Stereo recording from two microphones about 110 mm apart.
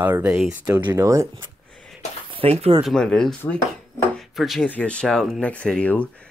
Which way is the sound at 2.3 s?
65° right (ahead or behind).